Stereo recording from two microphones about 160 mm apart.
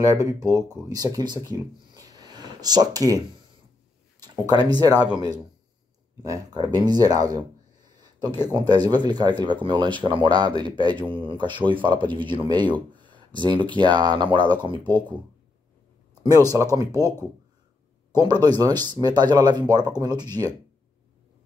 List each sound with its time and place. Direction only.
0.0 s speech: 20° right (ahead or behind)
8.0 s a sound: 25° right (ahead or behind)
8.5 s speech: 25° right (ahead or behind)
16.2 s speech: 25° right (ahead or behind)
18.1 s speech: 25° right (ahead or behind)